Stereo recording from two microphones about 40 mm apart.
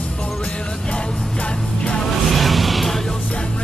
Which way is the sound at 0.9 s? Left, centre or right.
Left.